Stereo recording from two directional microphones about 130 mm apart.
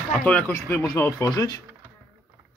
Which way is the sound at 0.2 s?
10° left (ahead or behind).